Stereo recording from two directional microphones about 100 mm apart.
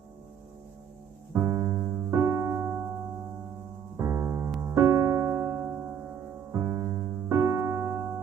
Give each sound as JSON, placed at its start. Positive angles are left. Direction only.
{"t": 1.3, "sound": "piano", "side_deg": -30}
{"t": 3.9, "sound": "music", "side_deg": -25}
{"t": 6.5, "sound": "piano", "side_deg": -30}